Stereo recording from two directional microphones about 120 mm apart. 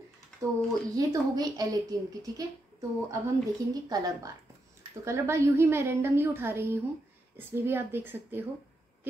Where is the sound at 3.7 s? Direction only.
30° right (ahead or behind).